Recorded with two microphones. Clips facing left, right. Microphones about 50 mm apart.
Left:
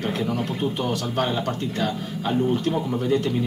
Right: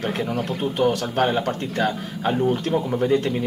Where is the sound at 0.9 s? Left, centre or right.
Right.